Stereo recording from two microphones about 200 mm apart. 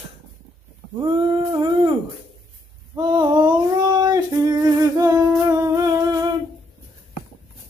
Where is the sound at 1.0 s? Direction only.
25° right (ahead or behind).